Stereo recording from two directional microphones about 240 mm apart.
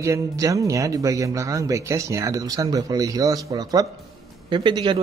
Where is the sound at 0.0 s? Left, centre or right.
Centre.